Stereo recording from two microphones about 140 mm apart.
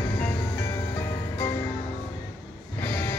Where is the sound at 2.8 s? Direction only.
15° left (ahead or behind).